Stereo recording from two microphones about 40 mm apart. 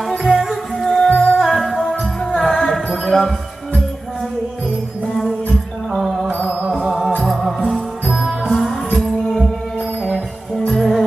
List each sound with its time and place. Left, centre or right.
0.2 s music: centre
0.8 s music: centre
1.4 s music: centre
5.9 s music: centre
6.3 s music: left
6.7 s music: centre
9.2 s music: centre